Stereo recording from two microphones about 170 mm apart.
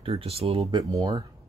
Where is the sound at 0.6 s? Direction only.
25° right (ahead or behind).